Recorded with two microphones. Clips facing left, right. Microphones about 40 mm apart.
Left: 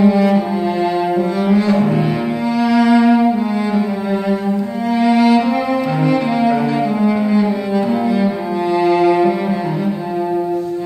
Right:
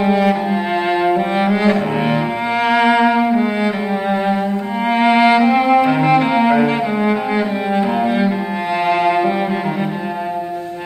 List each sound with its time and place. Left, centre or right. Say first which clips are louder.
0.0 s cello: left 2 dB; right
1.4 s cello: left 2 dB; right
2.6 s music: left 1 dB; right
4.9 s cello: even; right
8.7 s music: left 2 dB; right